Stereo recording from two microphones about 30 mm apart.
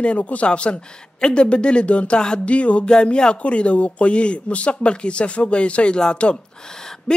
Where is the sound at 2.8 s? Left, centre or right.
Left.